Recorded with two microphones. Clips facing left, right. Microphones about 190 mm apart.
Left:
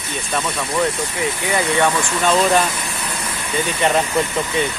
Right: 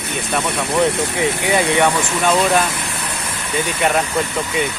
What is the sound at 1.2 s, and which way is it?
Speech, 20° right (ahead or behind).